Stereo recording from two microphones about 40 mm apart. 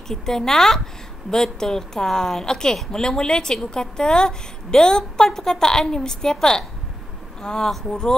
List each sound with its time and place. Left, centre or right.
0.1 s a woman's voice: centre